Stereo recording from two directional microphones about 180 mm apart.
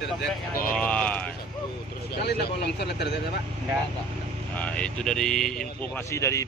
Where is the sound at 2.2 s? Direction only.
65° left (ahead or behind).